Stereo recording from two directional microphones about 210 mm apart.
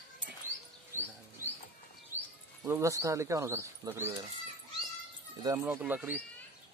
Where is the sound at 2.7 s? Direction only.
15° right (ahead or behind).